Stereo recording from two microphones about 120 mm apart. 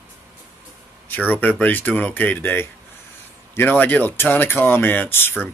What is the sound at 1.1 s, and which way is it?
Speech, 15° left (ahead or behind).